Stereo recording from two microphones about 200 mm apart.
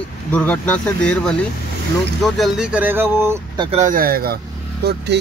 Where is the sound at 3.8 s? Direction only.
45° right (ahead or behind).